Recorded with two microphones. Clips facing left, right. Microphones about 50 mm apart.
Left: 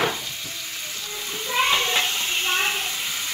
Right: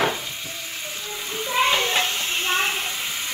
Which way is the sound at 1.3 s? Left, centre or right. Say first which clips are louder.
Right 1 dB; centre.